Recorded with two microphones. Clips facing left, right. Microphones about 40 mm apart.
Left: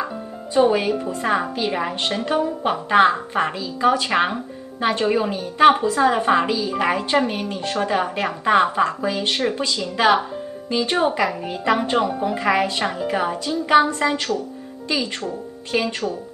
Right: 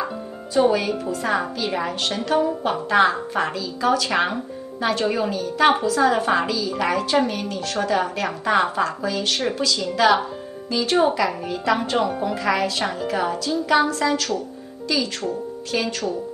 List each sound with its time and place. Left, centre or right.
0.6 s a woman's voice: left
3.5 s a woman's voice: left
4.1 s speech: centre
4.7 s a woman's voice: left
5.0 s speech: centre
5.3 s a woman's voice: left